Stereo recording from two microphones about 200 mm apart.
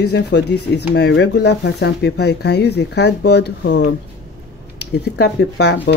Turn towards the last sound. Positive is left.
turn(degrees=55)  # may be behind; listen again after turning